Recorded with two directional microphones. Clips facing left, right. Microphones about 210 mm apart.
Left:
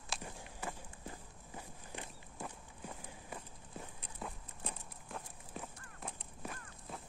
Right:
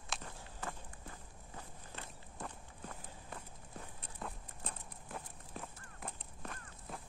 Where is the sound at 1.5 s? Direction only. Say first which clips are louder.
Left 3 dB; 15° left (ahead or behind).